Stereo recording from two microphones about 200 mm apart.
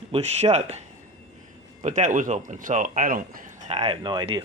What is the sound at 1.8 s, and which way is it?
Speech, 40° right (ahead or behind).